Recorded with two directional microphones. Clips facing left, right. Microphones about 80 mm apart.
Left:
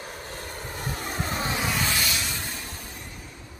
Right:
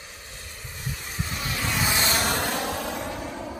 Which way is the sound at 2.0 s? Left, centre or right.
Right.